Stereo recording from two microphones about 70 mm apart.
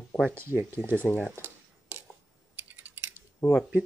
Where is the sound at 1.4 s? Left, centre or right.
Right.